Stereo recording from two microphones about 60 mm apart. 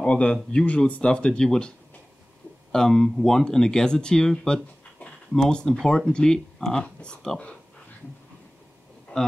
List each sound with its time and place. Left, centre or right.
0.0 s speech: centre
2.7 s speech: centre
9.1 s speech: left